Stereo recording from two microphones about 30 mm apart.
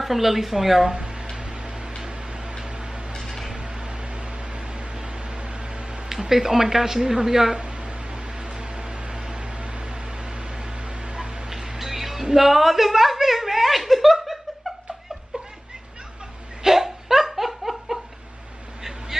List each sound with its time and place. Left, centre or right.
0.0 s a woman's voice: centre
2.0 s tick-tock: right
3.2 s a sound: centre
3.5 s vehicle: right
6.0 s a woman's voice: centre
7.5 s a sound: right; by 12.3 s centre
12.3 s speech: centre
16.6 s laughter: centre